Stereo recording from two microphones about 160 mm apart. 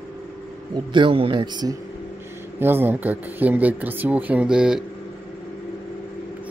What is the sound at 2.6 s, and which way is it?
Speech, 15° right (ahead or behind).